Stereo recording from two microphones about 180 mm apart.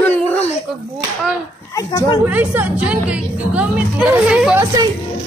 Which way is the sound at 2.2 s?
10° right (ahead or behind).